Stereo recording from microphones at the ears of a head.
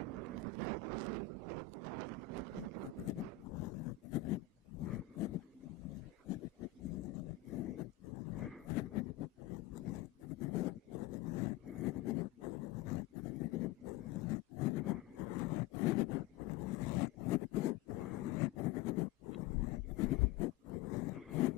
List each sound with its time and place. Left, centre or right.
0.0 s a sound: right
3.1 s roar: left
5.9 s wild animals: left